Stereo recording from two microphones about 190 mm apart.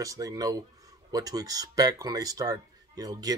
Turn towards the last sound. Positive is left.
turn(degrees=-20)  # may be behind; listen again after turning